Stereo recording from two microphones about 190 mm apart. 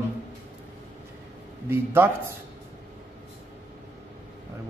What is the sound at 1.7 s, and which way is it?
Speech, 10° right (ahead or behind).